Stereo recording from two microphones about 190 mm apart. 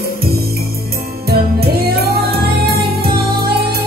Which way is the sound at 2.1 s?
55° right (ahead or behind).